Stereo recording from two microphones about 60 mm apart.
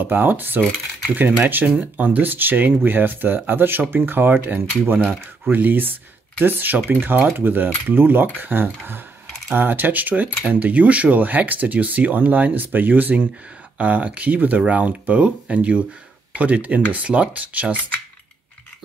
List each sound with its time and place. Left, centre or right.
0.0 s speech: right